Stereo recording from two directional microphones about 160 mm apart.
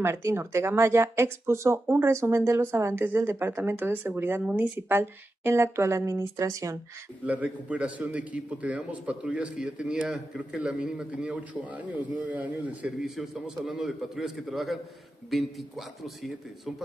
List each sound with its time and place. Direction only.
0.0 s a man's voice: 15° right (ahead or behind)
7.2 s a man's voice: 10° right (ahead or behind)
16.0 s speech: centre (ahead or behind)